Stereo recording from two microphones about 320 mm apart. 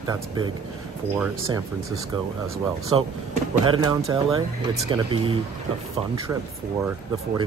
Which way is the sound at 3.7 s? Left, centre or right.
Centre.